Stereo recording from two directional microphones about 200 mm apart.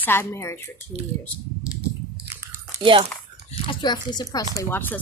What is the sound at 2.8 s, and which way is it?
Speech, 25° right (ahead or behind).